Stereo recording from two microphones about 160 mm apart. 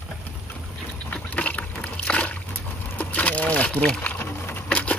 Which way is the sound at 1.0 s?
10° left (ahead or behind).